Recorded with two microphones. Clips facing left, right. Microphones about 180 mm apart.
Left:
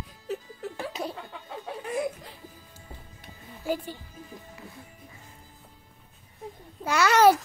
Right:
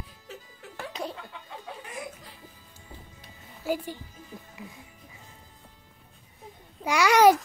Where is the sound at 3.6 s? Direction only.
10° right (ahead or behind).